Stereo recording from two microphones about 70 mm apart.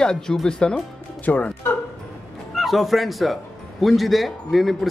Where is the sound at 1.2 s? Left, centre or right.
Left.